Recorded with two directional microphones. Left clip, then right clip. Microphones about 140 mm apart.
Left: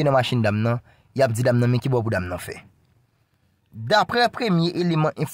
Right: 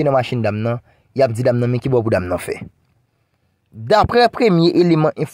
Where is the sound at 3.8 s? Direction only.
35° right (ahead or behind); by 5.0 s 50° right (ahead or behind).